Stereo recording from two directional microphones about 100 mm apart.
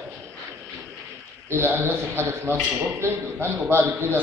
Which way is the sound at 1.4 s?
25° right (ahead or behind).